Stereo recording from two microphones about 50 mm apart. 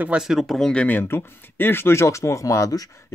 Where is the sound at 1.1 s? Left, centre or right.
Left.